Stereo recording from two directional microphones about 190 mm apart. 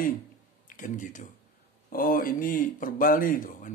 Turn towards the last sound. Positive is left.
turn(degrees=45)  # may be behind; listen again after turning